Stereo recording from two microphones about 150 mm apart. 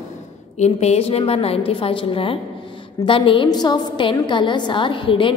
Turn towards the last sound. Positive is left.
turn(degrees=35)  # may be behind; listen again after turning